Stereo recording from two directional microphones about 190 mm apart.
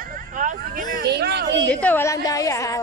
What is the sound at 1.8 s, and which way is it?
Speech, 10° left (ahead or behind).